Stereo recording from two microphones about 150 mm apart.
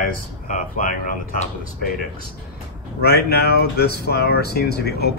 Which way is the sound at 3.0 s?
90° left.